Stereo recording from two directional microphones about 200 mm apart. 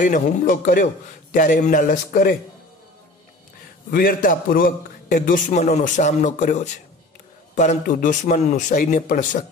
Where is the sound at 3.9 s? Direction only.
45° left (ahead or behind).